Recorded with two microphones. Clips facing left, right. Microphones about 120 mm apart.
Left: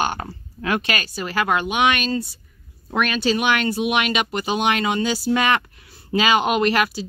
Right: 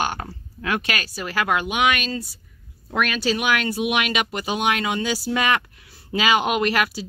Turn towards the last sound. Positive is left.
turn(degrees=-5)  # may be behind; listen again after turning